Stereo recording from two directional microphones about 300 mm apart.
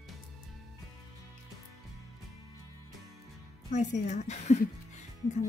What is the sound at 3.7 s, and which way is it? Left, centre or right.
Speech, left.